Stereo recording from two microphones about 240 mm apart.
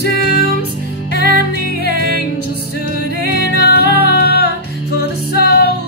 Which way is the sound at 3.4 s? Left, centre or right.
Left.